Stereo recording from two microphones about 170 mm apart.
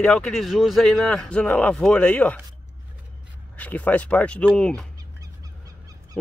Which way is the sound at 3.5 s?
10° left (ahead or behind).